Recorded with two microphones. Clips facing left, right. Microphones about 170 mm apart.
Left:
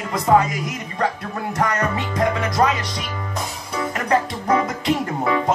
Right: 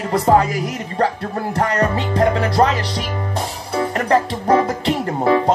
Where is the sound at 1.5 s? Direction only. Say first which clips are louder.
Right 3 dB; 30° right (ahead or behind).